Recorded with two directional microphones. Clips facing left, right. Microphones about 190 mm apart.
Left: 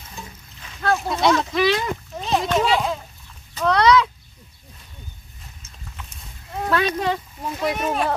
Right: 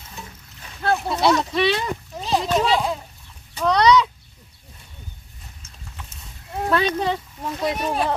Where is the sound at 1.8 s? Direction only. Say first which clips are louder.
Left 1 dB; 5° right (ahead or behind).